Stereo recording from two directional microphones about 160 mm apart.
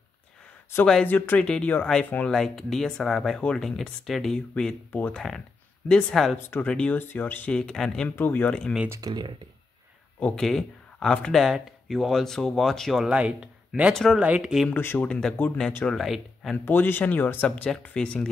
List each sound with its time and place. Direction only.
0.8 s speech: 10° left (ahead or behind)
6.3 s speech: 15° left (ahead or behind)
8.8 s speech: 15° right (ahead or behind)
10.2 s speech: 5° left (ahead or behind)
14.7 s speech: 10° left (ahead or behind)
16.5 s speech: 10° left (ahead or behind)